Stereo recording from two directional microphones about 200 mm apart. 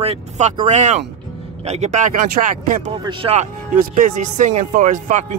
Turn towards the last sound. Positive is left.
turn(degrees=-40)  # may be behind; listen again after turning